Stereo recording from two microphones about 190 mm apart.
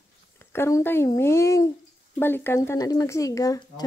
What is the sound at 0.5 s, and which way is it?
Speech, 15° left (ahead or behind).